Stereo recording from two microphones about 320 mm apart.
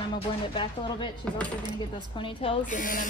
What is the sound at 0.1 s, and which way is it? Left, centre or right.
Speech, centre.